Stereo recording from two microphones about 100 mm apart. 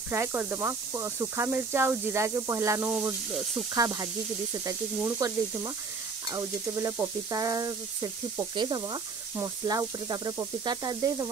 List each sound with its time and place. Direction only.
0.1 s speech: 25° right (ahead or behind)
3.7 s sizzle: 35° right (ahead or behind)